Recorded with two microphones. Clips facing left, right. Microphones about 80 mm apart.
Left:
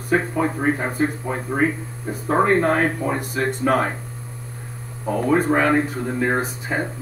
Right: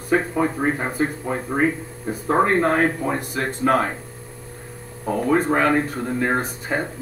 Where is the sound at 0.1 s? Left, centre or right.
Centre.